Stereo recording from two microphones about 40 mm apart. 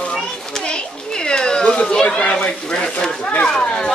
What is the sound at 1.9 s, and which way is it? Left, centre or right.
Speech, centre.